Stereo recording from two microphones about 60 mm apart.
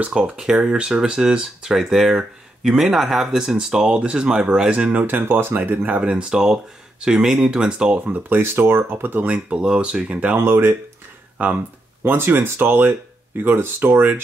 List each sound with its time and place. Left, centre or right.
0.0 s speech: centre; by 5.8 s right
5.8 s speech: right
8.0 s speech: right
9.2 s speech: right
10.3 s speech: right
11.4 s speech: right